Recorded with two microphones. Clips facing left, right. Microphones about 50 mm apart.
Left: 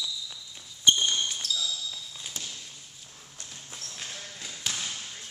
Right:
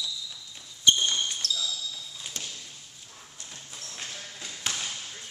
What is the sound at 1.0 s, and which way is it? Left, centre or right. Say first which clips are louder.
Basketball bounce: even; centre.